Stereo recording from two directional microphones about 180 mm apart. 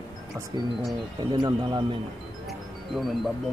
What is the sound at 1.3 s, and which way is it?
Speech, 25° right (ahead or behind).